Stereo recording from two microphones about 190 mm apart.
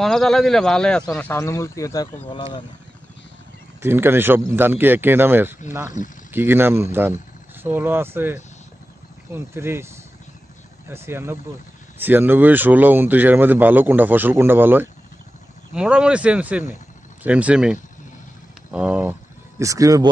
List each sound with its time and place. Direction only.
0.0 s speech: centre (ahead or behind)
2.2 s speech: 25° left (ahead or behind)
3.8 s speech: 10° right (ahead or behind)
9.5 s speech: 15° right (ahead or behind)
10.9 s speech: 10° right (ahead or behind)
19.6 s speech: 15° right (ahead or behind)